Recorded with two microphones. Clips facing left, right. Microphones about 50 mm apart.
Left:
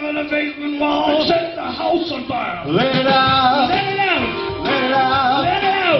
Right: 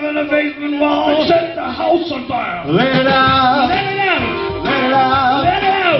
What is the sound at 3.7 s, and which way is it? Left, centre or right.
Music, centre.